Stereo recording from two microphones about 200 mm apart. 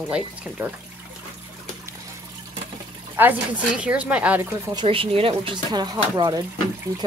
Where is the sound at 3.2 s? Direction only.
5° right (ahead or behind).